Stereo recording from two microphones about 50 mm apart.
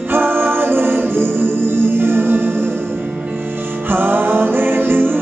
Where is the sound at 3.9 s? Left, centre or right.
Right.